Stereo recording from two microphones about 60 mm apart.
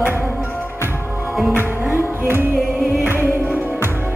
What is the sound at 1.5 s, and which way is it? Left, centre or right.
Music, right.